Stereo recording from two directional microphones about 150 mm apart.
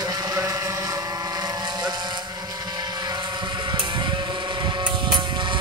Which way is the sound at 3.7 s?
30° right (ahead or behind).